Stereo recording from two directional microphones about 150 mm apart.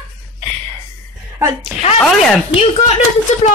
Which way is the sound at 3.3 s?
50° left (ahead or behind).